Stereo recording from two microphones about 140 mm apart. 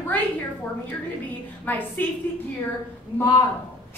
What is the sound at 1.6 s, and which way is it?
Speech, 10° left (ahead or behind).